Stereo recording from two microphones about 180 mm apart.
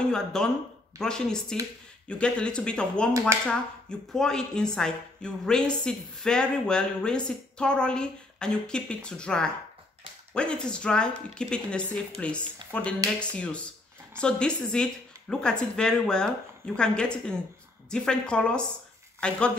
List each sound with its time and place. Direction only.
0.1 s speech: 5° left (ahead or behind)
3.1 s speech: 15° right (ahead or behind)
3.4 s speech: 5° left (ahead or behind)